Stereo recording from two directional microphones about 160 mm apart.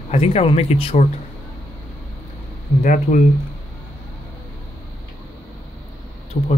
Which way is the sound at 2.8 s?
55° left (ahead or behind).